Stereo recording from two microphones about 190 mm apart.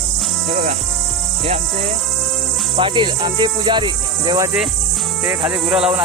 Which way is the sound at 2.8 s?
25° right (ahead or behind).